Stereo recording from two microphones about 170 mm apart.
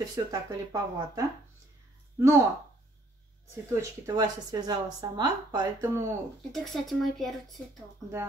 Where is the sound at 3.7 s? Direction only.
20° right (ahead or behind).